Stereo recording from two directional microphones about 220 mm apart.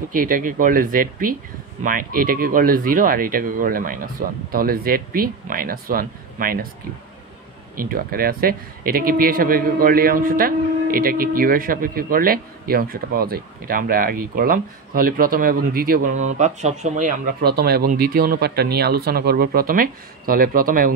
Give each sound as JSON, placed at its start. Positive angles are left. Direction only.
{"t": 0.1, "sound": "speech", "side_deg": -40}
{"t": 7.7, "sound": "speech", "side_deg": -40}